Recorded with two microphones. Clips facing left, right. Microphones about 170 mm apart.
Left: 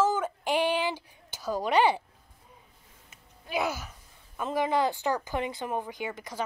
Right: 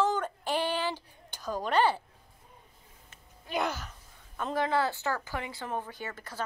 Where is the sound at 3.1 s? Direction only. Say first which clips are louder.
Left 1 dB; 5° left (ahead or behind).